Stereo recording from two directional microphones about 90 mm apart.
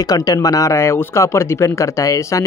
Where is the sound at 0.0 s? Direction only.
45° left (ahead or behind).